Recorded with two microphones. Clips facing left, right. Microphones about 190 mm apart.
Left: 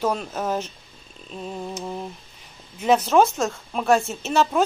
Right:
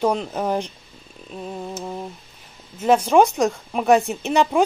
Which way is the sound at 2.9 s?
10° right (ahead or behind).